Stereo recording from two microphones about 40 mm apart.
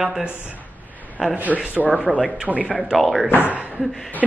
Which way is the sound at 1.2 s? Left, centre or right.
Centre.